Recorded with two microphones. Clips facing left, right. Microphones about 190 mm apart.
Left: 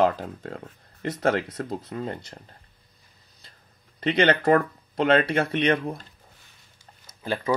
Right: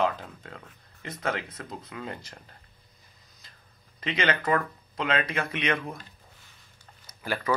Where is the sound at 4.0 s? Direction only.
35° left (ahead or behind).